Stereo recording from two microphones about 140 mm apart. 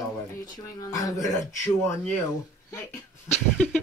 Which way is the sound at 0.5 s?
25° left (ahead or behind).